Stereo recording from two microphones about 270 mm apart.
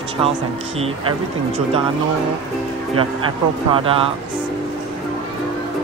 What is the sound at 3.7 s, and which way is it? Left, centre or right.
Speech, centre.